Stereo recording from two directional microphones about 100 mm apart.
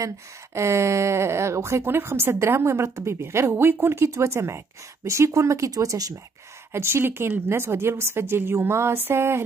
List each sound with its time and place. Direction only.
0.6 s speech: 30° right (ahead or behind)
6.7 s speech: 25° right (ahead or behind)